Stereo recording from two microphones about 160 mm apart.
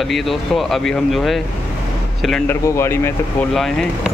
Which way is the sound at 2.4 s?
15° left (ahead or behind).